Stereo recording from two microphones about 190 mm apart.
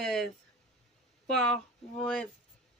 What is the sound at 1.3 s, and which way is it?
Speech, 5° left (ahead or behind).